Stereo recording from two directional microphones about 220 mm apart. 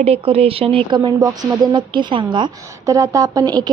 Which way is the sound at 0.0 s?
25° right (ahead or behind).